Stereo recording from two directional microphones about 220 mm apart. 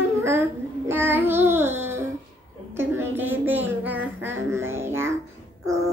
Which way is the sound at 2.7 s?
10° right (ahead or behind).